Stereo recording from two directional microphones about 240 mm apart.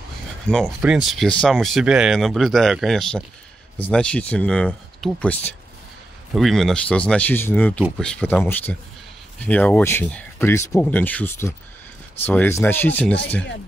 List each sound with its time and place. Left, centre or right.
0.5 s speech: centre